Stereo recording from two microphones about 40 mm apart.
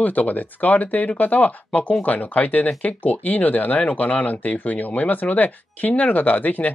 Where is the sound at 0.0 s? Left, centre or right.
Left.